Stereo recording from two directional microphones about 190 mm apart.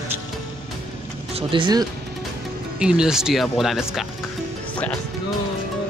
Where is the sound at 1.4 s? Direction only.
25° right (ahead or behind).